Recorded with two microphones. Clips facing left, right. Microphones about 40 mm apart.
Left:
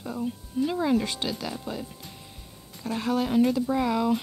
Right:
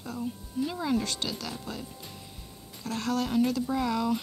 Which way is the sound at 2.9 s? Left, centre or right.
Centre.